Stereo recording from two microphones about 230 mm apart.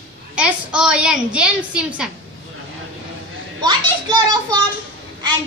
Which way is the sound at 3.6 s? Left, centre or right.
Centre.